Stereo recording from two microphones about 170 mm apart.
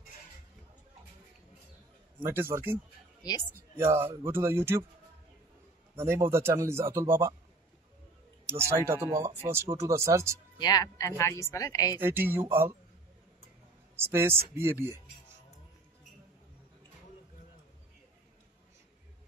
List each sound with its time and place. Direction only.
2.1 s a man's voice: 15° right (ahead or behind)
5.9 s a man's voice: 15° right (ahead or behind)
8.5 s a man's voice: 15° right (ahead or behind)
10.6 s speech: 20° left (ahead or behind)
12.0 s a man's voice: 15° right (ahead or behind)
13.9 s a man's voice: 15° right (ahead or behind)